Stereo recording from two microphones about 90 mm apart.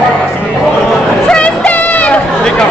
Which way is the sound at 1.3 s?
15° left (ahead or behind).